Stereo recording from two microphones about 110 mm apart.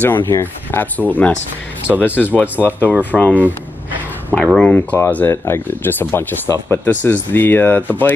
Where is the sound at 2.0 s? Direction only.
20° left (ahead or behind).